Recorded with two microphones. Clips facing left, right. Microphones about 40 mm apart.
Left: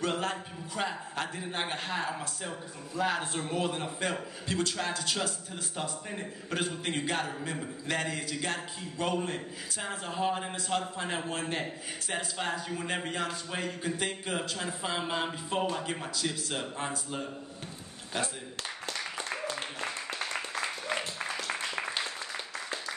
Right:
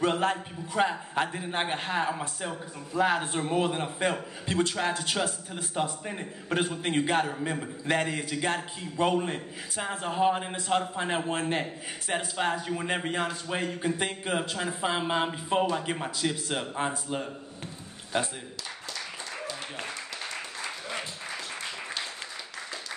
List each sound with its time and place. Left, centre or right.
0.0 s a man's voice: right